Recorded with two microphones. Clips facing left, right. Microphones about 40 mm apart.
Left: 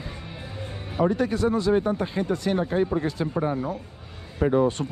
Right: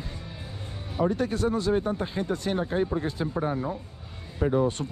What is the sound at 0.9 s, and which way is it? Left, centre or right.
Speech, left.